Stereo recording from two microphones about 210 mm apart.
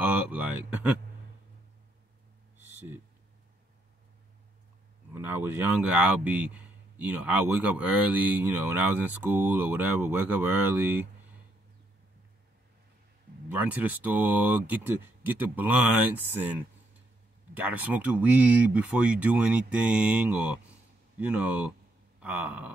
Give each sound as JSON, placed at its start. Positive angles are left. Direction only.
{"t": 0.0, "sound": "speech", "side_deg": -5}
{"t": 5.1, "sound": "speech", "side_deg": -10}
{"t": 13.5, "sound": "speech", "side_deg": -10}